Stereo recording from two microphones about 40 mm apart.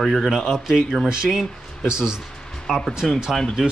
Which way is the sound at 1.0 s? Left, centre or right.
Right.